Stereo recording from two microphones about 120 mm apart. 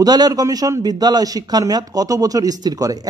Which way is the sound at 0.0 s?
35° right (ahead or behind).